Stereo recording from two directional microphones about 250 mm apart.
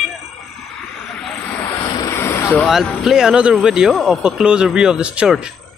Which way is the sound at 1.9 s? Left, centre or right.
Centre.